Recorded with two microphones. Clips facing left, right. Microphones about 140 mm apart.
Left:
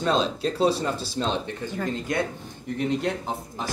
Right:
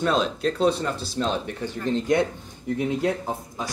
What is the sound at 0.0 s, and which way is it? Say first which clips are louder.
Speech: right 1 dB; 5° right (ahead or behind).